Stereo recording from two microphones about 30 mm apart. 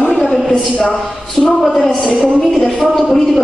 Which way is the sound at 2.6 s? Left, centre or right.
Centre.